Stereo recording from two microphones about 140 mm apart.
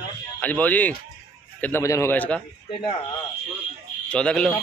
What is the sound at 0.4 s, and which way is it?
A man's voice, 10° left (ahead or behind).